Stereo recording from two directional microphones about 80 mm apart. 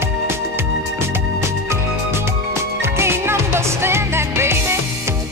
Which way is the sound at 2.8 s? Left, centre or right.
Right.